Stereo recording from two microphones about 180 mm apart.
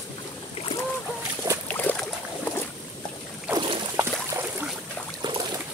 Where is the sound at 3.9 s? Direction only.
15° right (ahead or behind).